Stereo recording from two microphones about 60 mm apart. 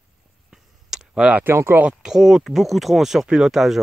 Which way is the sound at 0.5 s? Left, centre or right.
Centre.